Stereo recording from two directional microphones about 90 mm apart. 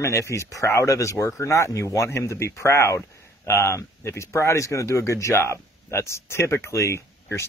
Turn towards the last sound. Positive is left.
turn(degrees=30)  # may be behind; listen again after turning